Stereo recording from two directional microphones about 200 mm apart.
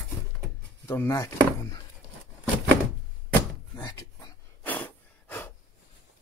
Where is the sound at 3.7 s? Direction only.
20° left (ahead or behind).